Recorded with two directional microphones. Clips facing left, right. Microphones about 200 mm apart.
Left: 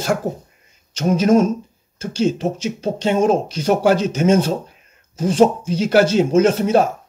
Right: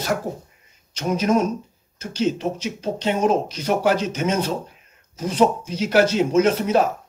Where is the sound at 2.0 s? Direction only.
30° left (ahead or behind).